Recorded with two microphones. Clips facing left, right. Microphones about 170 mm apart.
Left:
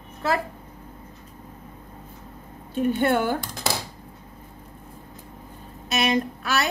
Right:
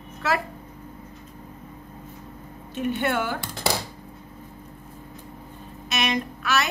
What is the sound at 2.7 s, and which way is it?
Speech, 40° left (ahead or behind).